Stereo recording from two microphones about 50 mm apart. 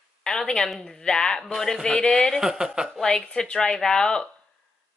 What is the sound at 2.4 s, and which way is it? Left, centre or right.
Speech, centre.